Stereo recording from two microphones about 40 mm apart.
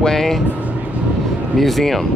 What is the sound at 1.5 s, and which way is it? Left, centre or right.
Speech, centre.